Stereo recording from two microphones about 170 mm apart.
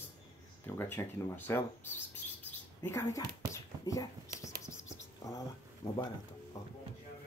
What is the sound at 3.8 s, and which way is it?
Dog, 20° left (ahead or behind).